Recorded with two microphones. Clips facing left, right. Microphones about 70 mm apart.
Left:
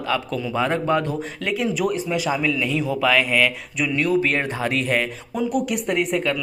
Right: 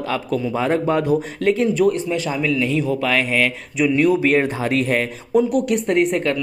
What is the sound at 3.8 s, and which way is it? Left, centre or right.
Speech, centre.